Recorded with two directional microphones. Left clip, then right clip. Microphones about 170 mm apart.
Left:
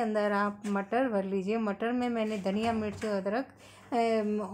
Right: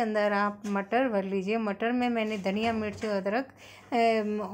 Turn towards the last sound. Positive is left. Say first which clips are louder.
# right 3 dB
turn(degrees=-15)  # may be behind; listen again after turning